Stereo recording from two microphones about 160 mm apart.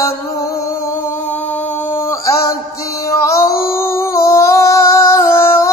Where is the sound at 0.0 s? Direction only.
20° left (ahead or behind).